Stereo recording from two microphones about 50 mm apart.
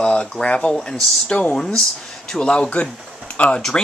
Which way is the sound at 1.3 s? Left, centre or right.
Left.